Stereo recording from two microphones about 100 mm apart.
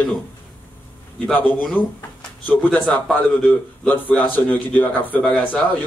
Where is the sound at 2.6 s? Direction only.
Centre (ahead or behind).